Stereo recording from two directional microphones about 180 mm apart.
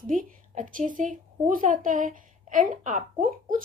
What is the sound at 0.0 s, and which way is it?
A woman's voice, 45° right (ahead or behind).